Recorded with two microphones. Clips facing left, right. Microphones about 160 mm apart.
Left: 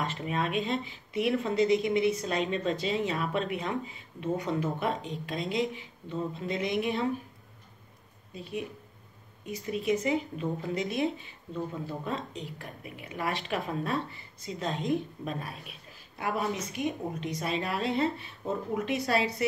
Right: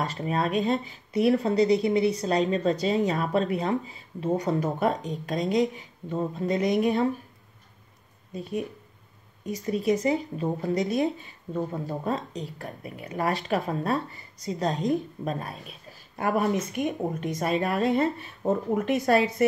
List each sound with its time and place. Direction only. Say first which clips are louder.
0.0 s speech: right 4 dB; 40° right (ahead or behind)
8.3 s speech: right 5 dB; 45° right (ahead or behind)
16.2 s speech: right 6 dB; 50° right (ahead or behind)